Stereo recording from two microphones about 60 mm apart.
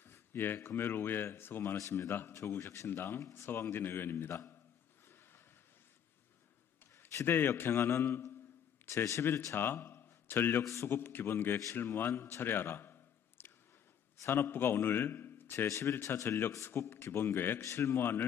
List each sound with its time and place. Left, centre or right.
0.0 s speech: left
1.8 s speech: left
2.9 s speech: left
3.2 s speech: left
3.4 s speech: left
7.2 s a man's voice: left
9.6 s a man's voice: left
10.7 s speech: left
11.0 s a man's voice: left
15.5 s speech: left
16.5 s speech: left
17.6 s speech: left